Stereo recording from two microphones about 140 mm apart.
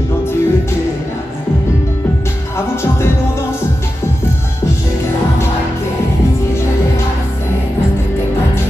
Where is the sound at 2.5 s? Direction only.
20° left (ahead or behind).